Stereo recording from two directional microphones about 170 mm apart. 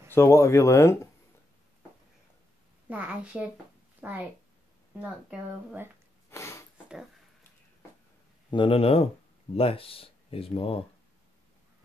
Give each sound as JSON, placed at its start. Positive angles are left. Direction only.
{"t": 0.1, "sound": "speech", "side_deg": 15}
{"t": 2.9, "sound": "a woman's voice", "side_deg": -5}
{"t": 6.3, "sound": "a sound", "side_deg": 15}
{"t": 8.5, "sound": "speech", "side_deg": 30}